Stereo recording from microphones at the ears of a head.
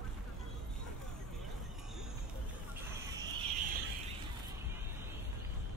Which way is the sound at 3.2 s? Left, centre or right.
Right.